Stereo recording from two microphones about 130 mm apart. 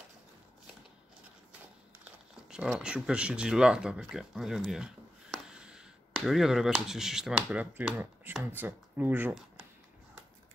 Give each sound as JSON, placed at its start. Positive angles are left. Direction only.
{"t": 2.4, "sound": "speech", "side_deg": -5}